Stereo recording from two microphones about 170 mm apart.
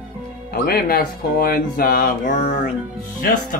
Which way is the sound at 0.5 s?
65° left (ahead or behind).